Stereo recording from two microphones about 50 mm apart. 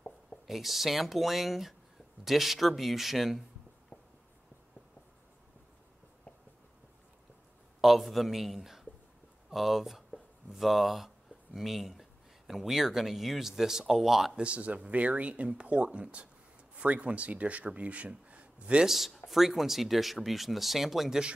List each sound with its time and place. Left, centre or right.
0.5 s speech: centre
3.9 s a sound: left
7.8 s speech: centre
14.3 s speech: right
18.9 s speech: centre